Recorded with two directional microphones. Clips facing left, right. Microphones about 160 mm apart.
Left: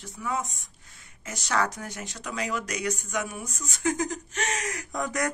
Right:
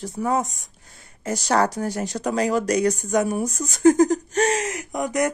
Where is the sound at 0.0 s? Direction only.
40° right (ahead or behind).